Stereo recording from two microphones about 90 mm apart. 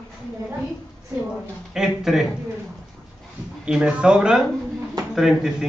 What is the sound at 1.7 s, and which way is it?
Speech, 5° right (ahead or behind).